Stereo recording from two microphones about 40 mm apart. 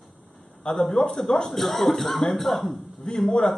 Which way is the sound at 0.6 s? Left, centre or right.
Centre.